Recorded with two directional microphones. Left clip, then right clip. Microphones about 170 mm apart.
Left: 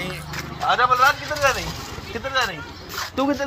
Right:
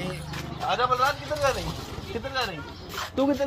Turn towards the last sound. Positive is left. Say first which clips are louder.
# left 3 dB
turn(degrees=0)  # may be behind; listen again after turning